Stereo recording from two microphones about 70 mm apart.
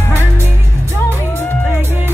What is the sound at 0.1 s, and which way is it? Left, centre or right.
Music, right.